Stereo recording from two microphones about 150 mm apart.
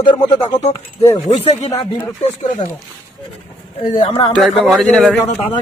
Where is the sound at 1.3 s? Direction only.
50° left (ahead or behind).